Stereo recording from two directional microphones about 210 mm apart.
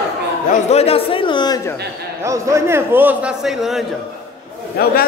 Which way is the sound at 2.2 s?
15° right (ahead or behind).